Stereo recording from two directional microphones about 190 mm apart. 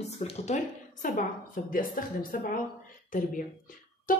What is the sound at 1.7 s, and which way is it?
A woman's voice, 45° left (ahead or behind).